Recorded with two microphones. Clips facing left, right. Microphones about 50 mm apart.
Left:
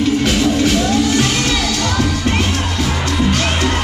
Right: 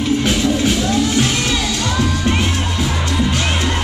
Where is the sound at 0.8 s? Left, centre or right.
Left.